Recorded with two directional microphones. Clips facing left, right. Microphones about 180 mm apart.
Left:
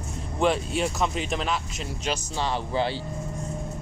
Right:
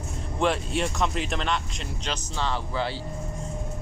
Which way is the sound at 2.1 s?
15° left (ahead or behind).